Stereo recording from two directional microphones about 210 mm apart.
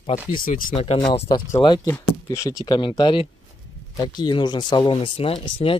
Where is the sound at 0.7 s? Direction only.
25° left (ahead or behind).